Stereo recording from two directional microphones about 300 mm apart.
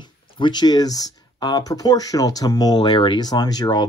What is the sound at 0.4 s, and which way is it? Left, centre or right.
Speech, centre.